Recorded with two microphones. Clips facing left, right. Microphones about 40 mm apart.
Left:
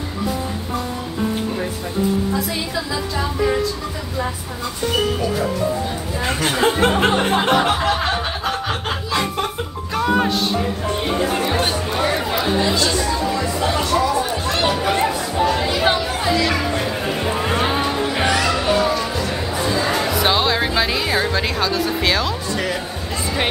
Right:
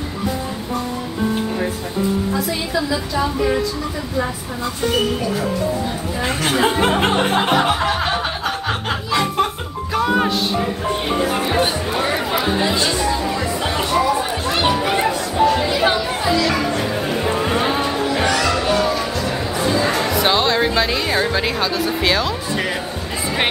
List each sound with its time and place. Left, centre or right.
2.7 s speech: centre
6.1 s speech: centre
10.0 s music: centre
11.3 s chatter: centre
12.5 s chatter: right
14.7 s chatter: centre
16.8 s music: centre
19.2 s chatter: centre